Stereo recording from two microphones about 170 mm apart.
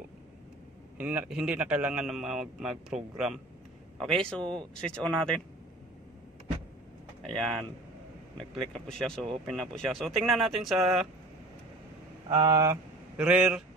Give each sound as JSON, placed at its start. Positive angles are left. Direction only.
{"t": 0.9, "sound": "a man's voice", "side_deg": -10}
{"t": 7.2, "sound": "a man's voice", "side_deg": 0}
{"t": 8.7, "sound": "a man's voice", "side_deg": 5}
{"t": 12.3, "sound": "speech", "side_deg": -25}
{"t": 13.2, "sound": "speech", "side_deg": -5}